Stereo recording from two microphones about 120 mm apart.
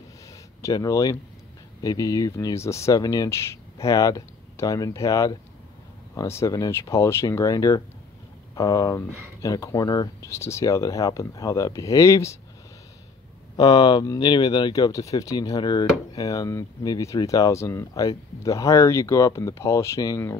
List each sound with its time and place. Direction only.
0.6 s speech: 30° left (ahead or behind)
13.6 s speech: 35° left (ahead or behind)